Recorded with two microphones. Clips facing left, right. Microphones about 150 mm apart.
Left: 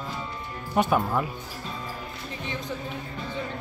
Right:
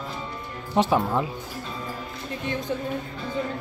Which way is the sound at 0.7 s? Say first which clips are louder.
Right 2 dB; 25° right (ahead or behind).